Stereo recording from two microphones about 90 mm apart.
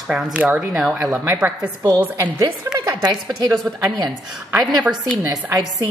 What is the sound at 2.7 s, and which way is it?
Speech, 50° right (ahead or behind).